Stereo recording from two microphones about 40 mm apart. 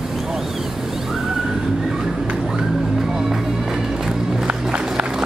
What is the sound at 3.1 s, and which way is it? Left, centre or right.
Music, centre.